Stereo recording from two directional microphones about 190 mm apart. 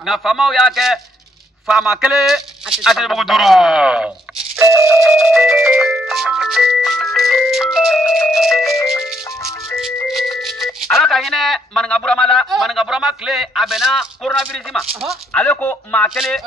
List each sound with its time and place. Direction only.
0.0 s a man's voice: centre (ahead or behind)
4.7 s music: 15° right (ahead or behind)
5.0 s music: centre (ahead or behind)
9.4 s music: 15° left (ahead or behind)
10.0 s speech: centre (ahead or behind)